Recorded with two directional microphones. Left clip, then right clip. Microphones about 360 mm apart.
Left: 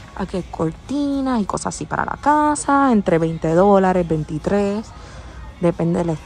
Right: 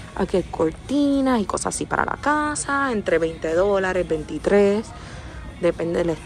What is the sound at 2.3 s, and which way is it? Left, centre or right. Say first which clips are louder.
A woman's voice: left 10 dB; centre.